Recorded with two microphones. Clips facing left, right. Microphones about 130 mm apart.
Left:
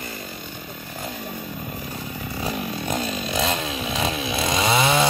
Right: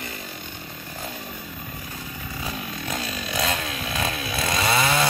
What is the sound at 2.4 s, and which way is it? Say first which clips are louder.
Chainsaw: left 5 dB; 30° left (ahead or behind).